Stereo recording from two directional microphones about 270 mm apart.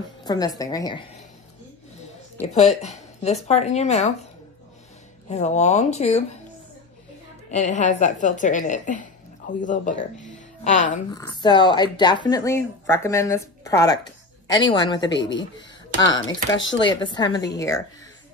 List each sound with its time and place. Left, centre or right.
0.2 s speech: centre
2.5 s a woman's voice: left
5.3 s a woman's voice: left
7.5 s a woman's voice: left
10.1 s music: left
11.1 s speech: centre
15.0 s speech: left
16.0 s speech: centre